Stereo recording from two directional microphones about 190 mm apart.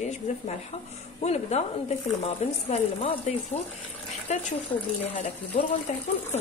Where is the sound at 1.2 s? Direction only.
35° left (ahead or behind).